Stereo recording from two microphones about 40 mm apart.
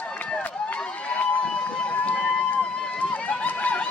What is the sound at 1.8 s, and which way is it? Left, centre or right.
Run, left.